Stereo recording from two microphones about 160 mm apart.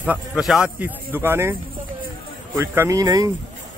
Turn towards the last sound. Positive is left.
turn(degrees=-25)  # may be behind; listen again after turning